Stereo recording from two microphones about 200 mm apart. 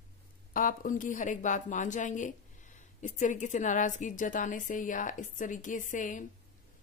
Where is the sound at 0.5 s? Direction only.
45° left (ahead or behind).